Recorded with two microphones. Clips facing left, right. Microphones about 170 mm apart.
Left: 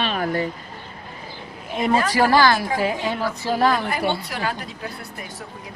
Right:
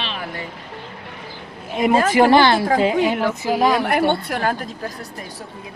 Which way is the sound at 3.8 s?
60° right (ahead or behind).